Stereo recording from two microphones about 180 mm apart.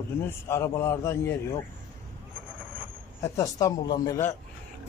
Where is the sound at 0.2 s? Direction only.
15° left (ahead or behind).